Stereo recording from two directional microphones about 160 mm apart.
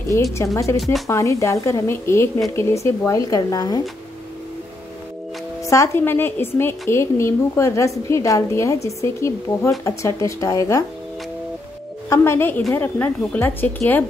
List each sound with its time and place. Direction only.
0.1 s a woman's voice: 20° left (ahead or behind)
5.7 s a woman's voice: 15° left (ahead or behind)
12.1 s a woman's voice: 15° left (ahead or behind)